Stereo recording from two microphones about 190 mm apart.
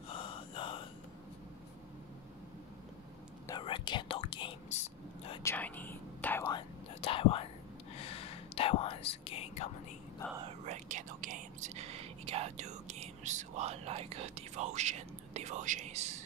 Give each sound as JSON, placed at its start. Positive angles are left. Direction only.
{"t": 0.1, "sound": "a sound", "side_deg": 25}
{"t": 3.4, "sound": "speech", "side_deg": 25}
{"t": 4.7, "sound": "whispering", "side_deg": 35}
{"t": 5.4, "sound": "whispering", "side_deg": 10}
{"t": 6.5, "sound": "whispering", "side_deg": 30}
{"t": 10.7, "sound": "whispering", "side_deg": -40}